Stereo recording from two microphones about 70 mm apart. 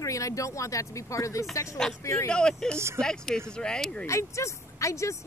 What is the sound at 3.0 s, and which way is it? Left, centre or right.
Speech, centre.